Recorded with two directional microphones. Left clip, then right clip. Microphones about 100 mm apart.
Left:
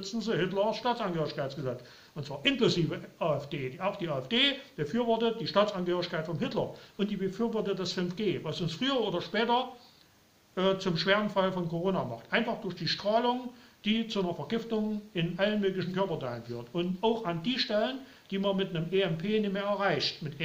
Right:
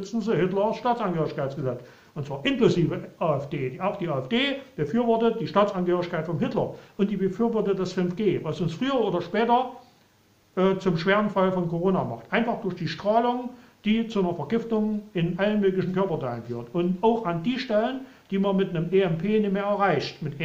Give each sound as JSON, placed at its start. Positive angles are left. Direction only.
{"t": 0.0, "sound": "speech", "side_deg": 15}